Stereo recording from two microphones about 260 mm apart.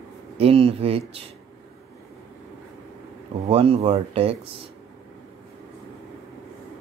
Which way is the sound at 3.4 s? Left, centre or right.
Right.